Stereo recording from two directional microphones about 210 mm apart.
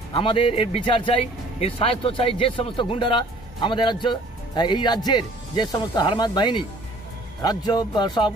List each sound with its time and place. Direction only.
0.1 s speech: 25° left (ahead or behind)